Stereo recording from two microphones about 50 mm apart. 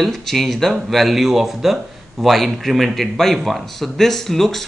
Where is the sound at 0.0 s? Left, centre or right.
Centre.